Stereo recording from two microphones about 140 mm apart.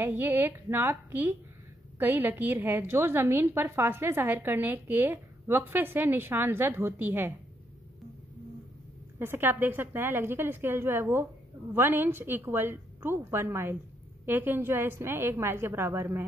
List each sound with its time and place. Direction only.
0.0 s a woman's voice: 15° right (ahead or behind)
9.2 s a woman's voice: 15° right (ahead or behind)